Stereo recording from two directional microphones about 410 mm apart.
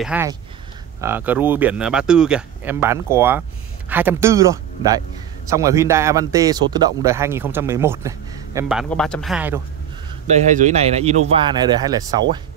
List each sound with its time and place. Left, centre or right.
0.0 s speech: centre
10.2 s speech: centre